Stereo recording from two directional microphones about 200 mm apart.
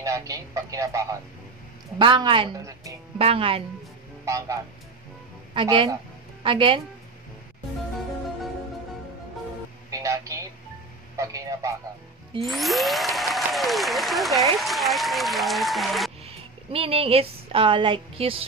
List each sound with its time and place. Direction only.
0.0 s speech: 15° right (ahead or behind)
3.2 s speech: 30° right (ahead or behind)
4.2 s speech: 15° right (ahead or behind)
9.8 s a sound: 15° right (ahead or behind)
11.1 s a man's voice: 15° right (ahead or behind)
12.4 s speech: centre (ahead or behind)
16.3 s speech: 30° right (ahead or behind)